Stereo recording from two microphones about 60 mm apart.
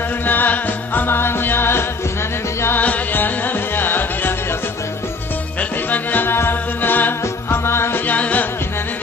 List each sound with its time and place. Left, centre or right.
0.2 s music: left
2.8 s music: left
5.6 s music: left
8.1 s music: left